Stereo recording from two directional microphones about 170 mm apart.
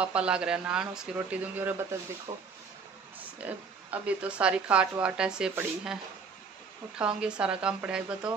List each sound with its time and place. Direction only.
0.0 s speech: 5° right (ahead or behind)
2.3 s speech: 25° right (ahead or behind)
3.4 s speech: 10° right (ahead or behind)
7.0 s speech: 5° right (ahead or behind)